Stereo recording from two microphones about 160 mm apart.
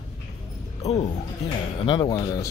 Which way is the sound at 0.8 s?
40° left (ahead or behind).